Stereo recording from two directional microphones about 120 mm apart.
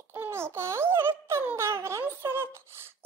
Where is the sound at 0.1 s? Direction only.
20° right (ahead or behind).